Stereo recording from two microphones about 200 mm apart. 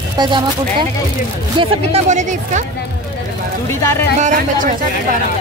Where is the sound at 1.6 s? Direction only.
35° right (ahead or behind).